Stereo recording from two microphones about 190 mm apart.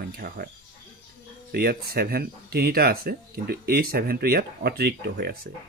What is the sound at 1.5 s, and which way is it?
Speech, 55° right (ahead or behind).